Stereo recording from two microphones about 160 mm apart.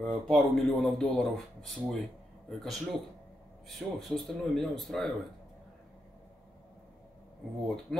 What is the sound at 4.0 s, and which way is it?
Speech, centre (ahead or behind).